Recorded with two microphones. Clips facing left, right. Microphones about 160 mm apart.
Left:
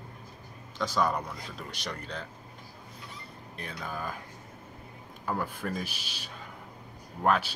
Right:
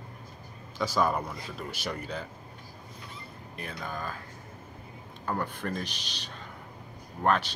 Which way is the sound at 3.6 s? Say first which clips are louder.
Even; centre (ahead or behind).